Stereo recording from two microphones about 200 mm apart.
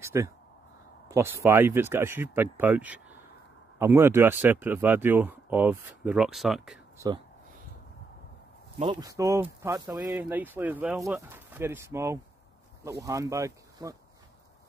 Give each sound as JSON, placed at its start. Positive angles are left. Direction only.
{"t": 0.0, "sound": "speech", "side_deg": -15}
{"t": 9.0, "sound": "speech", "side_deg": -15}